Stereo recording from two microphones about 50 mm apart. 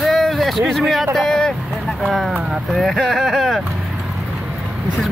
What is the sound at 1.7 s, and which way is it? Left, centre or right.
Speech, centre.